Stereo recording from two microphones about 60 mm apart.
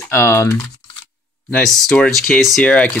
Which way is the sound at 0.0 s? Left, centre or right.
Left.